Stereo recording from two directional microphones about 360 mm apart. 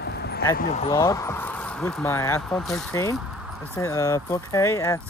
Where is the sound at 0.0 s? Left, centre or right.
Left.